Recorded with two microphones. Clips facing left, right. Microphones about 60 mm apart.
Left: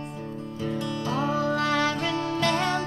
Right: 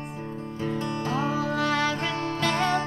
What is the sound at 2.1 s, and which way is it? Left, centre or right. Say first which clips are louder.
Music: left 2 dB; right.